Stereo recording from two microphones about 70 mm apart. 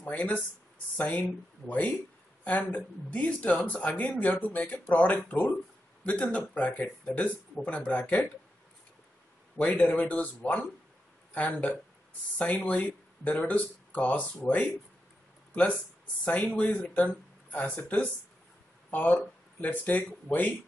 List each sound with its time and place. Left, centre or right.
0.0 s speech: centre
9.6 s speech: centre
15.5 s speech: centre